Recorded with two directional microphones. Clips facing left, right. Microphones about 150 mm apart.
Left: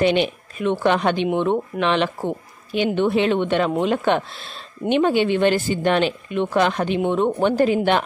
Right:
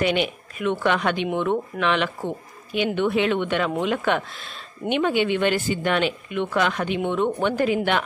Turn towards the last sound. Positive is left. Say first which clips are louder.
# left 4 dB
turn(degrees=35)  # may be behind; listen again after turning